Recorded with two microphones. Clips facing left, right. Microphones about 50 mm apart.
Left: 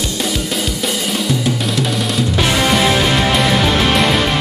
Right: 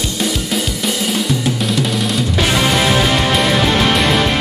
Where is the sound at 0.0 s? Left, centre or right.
Centre.